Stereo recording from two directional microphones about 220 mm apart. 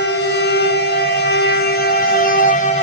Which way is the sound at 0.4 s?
50° left (ahead or behind).